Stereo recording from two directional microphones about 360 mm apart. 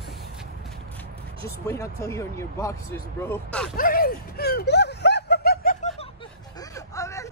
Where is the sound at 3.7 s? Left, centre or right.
Left.